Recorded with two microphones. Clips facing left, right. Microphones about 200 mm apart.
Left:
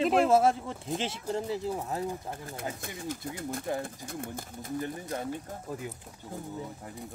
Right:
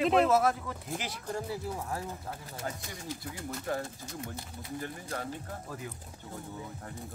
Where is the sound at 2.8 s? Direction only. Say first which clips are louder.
Left 4 dB; 55° left (ahead or behind).